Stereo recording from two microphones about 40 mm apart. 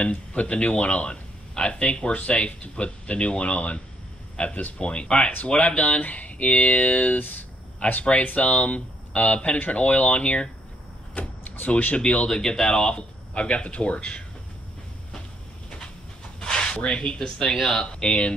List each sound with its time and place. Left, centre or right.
0.0 s speech: left
8.0 s speech: left
12.3 s speech: centre
16.3 s speech: left